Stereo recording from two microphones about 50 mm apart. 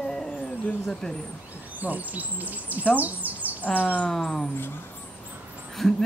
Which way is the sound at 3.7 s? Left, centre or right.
Left.